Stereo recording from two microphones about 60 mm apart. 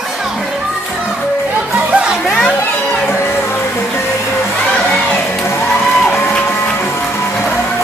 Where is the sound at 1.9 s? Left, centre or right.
Centre.